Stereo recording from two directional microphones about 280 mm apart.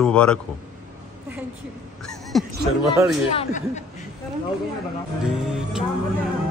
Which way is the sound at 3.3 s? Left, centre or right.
Left.